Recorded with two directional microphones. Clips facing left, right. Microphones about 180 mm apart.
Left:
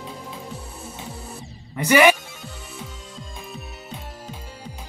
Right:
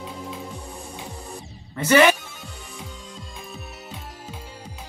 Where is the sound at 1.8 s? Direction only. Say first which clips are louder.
Even; 10° left (ahead or behind).